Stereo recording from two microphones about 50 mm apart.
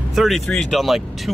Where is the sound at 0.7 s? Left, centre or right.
Centre.